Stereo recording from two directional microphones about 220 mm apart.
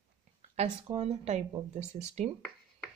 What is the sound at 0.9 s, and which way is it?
Speech, 30° right (ahead or behind).